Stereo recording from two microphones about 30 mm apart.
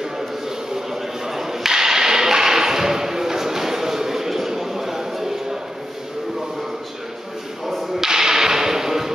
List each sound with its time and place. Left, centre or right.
1.2 s whip: centre
8.0 s whip: centre